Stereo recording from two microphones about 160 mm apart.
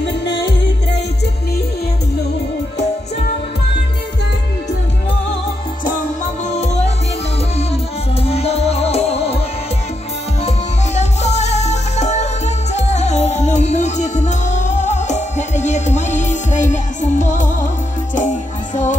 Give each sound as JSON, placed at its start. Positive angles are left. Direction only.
{"t": 0.0, "sound": "music", "side_deg": 90}
{"t": 6.5, "sound": "music", "side_deg": 45}
{"t": 11.0, "sound": "music", "side_deg": 45}